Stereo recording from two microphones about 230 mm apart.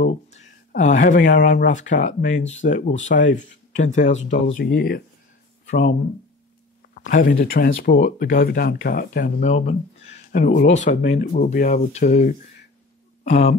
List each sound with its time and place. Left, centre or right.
0.0 s speech: left
4.6 s speech: left
7.0 s speech: left